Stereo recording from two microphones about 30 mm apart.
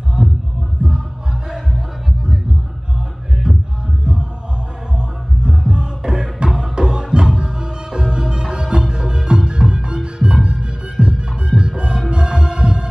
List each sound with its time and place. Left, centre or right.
0.2 s music: right
3.4 s music: right
4.0 s a sound: right
4.9 s music: right